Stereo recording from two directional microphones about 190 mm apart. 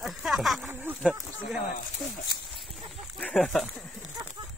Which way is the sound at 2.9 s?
5° left (ahead or behind).